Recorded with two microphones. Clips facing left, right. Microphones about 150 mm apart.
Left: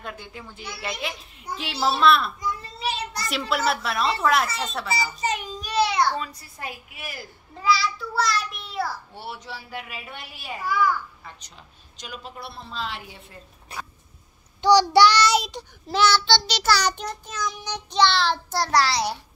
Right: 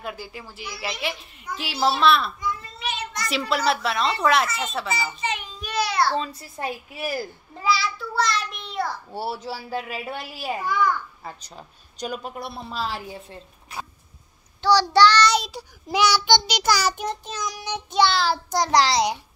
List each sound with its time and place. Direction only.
0.0 s a woman's voice: 5° right (ahead or behind)
2.8 s a sound: 35° left (ahead or behind)
3.3 s a woman's voice: centre (ahead or behind)
4.9 s a sound: 40° left (ahead or behind); by 6.1 s 20° left (ahead or behind)
6.1 s a woman's voice: 25° right (ahead or behind)
7.5 s a child's voice: centre (ahead or behind)
9.1 s a woman's voice: 35° right (ahead or behind)
10.7 s a woman's voice: 5° left (ahead or behind)
11.2 s a woman's voice: 35° right (ahead or behind)
14.6 s child singing: 15° left (ahead or behind)
15.5 s a child's voice: 15° right (ahead or behind)
17.1 s child singing: 25° right (ahead or behind)
17.5 s a child's voice: 10° right (ahead or behind)
18.5 s a child's voice: 15° right (ahead or behind)